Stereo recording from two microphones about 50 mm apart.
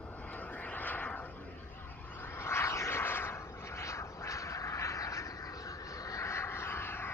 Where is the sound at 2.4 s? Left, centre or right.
Left.